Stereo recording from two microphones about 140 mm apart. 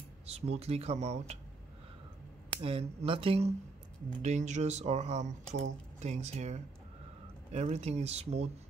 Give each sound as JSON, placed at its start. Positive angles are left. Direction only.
{"t": 0.3, "sound": "speech", "side_deg": -50}
{"t": 2.6, "sound": "speech", "side_deg": -40}
{"t": 4.2, "sound": "speech", "side_deg": -55}